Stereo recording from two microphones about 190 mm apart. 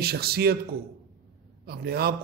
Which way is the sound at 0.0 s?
55° right (ahead or behind).